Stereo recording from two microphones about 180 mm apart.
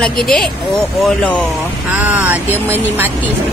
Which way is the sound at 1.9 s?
10° right (ahead or behind).